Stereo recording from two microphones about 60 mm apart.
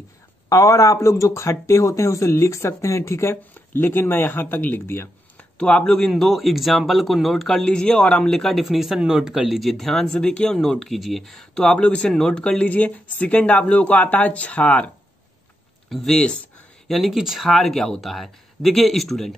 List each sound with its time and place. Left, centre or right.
0.5 s a man's voice: left
3.5 s speech: left
5.4 s speech: centre
11.6 s speech: centre
12.6 s speech: left
15.9 s speech: centre